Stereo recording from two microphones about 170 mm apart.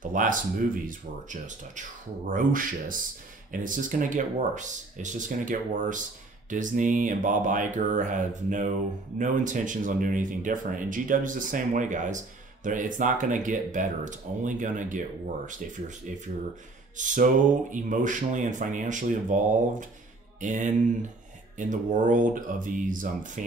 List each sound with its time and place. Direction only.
0.1 s speech: 50° right (ahead or behind)
20.3 s mantra: 45° right (ahead or behind)
21.5 s speech: 50° right (ahead or behind)